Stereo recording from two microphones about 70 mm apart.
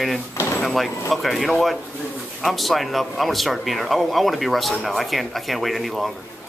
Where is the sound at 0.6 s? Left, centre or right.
Centre.